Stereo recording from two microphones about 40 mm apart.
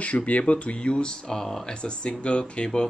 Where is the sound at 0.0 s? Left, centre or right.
Left; by 1.7 s centre.